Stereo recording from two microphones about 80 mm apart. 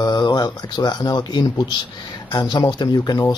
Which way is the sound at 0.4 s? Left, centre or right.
Left.